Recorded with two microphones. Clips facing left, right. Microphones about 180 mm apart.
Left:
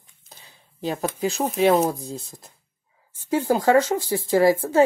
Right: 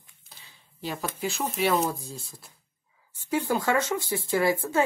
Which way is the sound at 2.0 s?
20° left (ahead or behind).